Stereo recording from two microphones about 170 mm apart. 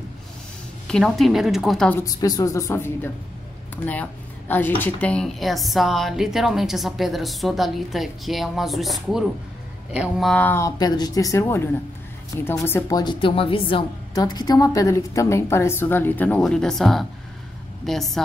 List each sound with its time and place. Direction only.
0.8 s speech: 5° left (ahead or behind)
2.0 s a woman's voice: 20° left (ahead or behind); by 18.2 s centre (ahead or behind)